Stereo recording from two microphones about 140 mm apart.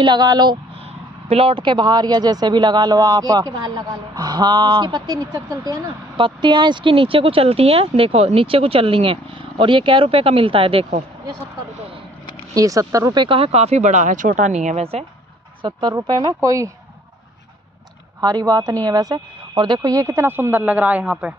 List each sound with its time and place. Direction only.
0.0 s speech: 30° right (ahead or behind)
1.3 s speech: 40° right (ahead or behind)
12.5 s speech: 25° right (ahead or behind); by 15.0 s 45° right (ahead or behind)
15.6 s speech: 30° right (ahead or behind)
18.2 s speech: 25° right (ahead or behind); by 21.4 s 5° right (ahead or behind)